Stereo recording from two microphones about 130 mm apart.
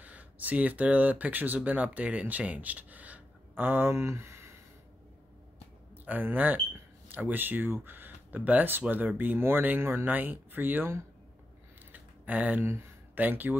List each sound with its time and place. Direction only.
0.0 s speech: 10° right (ahead or behind)
6.0 s speech: 15° right (ahead or behind)
11.9 s a sound: 10° right (ahead or behind)